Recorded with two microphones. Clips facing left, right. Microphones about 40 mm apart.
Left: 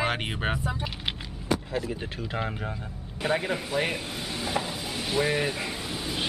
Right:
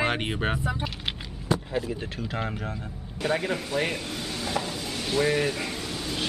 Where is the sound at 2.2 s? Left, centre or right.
Centre.